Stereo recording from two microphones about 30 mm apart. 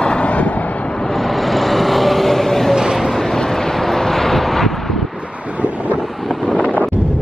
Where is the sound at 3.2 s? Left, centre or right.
Centre.